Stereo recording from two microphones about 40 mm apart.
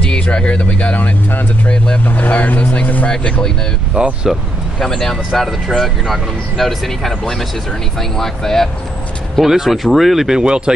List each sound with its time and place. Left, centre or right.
0.0 s speech: left
4.0 s speech: right
4.8 s speech: centre
9.4 s speech: centre
10.4 s speech: right